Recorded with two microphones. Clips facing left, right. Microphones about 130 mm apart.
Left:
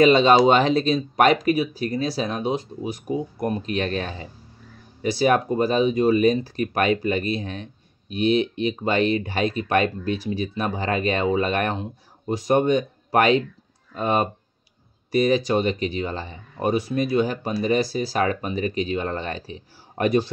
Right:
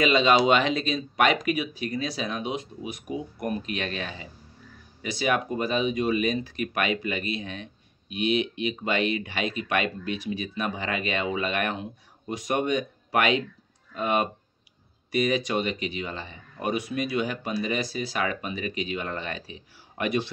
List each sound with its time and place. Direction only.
0.0 s speech: 35° left (ahead or behind)